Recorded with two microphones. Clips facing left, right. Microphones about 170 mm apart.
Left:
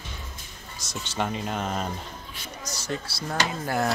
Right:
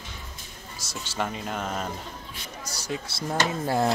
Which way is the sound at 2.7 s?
10° right (ahead or behind).